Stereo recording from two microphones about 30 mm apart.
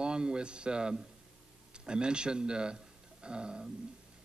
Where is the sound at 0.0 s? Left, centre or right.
Right.